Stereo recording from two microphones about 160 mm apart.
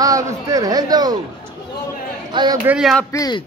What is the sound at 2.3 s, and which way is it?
Speech, 25° right (ahead or behind).